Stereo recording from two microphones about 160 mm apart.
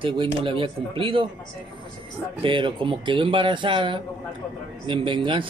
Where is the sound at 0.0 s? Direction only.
30° right (ahead or behind).